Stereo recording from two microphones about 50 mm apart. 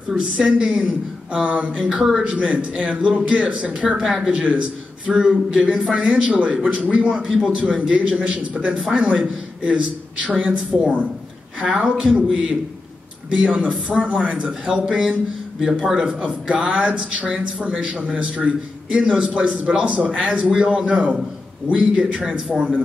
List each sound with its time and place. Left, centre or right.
0.1 s speech: centre
2.0 s speech: centre
2.2 s speech: right
4.0 s speech: centre
4.3 s speech: right
7.2 s a man's voice: centre; by 11.1 s right
11.6 s a man's voice: centre; by 14.8 s right
16.1 s a man's voice: right